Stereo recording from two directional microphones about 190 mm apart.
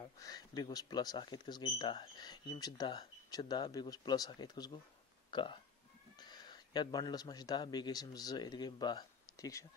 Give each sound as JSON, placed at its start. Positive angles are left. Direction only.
{"t": 0.0, "sound": "speech", "side_deg": 20}